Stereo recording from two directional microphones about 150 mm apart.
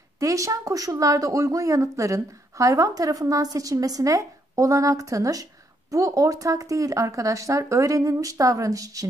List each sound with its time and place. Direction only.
0.2 s speech: 20° right (ahead or behind)